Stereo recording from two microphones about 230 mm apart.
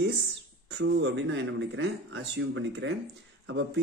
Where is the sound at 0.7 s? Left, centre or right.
Right.